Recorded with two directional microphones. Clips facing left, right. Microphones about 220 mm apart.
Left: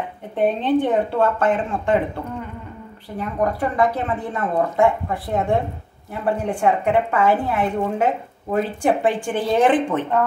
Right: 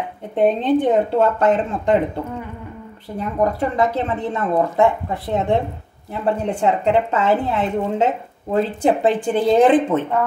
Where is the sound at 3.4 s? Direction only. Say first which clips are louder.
Right 1 dB; 25° right (ahead or behind).